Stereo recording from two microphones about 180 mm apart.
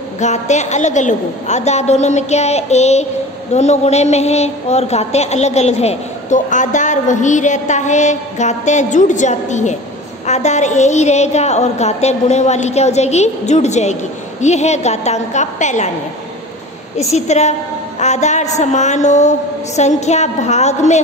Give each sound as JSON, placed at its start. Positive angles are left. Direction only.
{"t": 0.2, "sound": "a woman's voice", "side_deg": 40}
{"t": 17.0, "sound": "a woman's voice", "side_deg": 40}